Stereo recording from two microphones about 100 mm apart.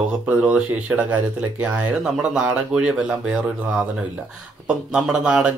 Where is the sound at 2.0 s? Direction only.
5° right (ahead or behind).